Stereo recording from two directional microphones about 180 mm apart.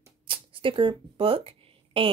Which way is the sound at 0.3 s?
30° right (ahead or behind).